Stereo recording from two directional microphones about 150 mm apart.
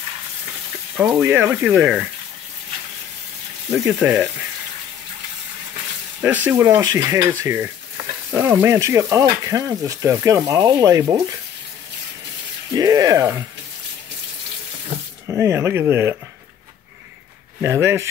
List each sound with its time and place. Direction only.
0.9 s speech: 10° right (ahead or behind)
3.7 s speech: 10° right (ahead or behind)
6.2 s speech: 10° right (ahead or behind)
6.8 s frying: 25° right (ahead or behind)
7.2 s speech: 20° right (ahead or behind)
8.3 s frying: 15° right (ahead or behind)
12.7 s frying: 25° right (ahead or behind)
15.2 s speech: 15° right (ahead or behind)
17.6 s speech: 15° right (ahead or behind)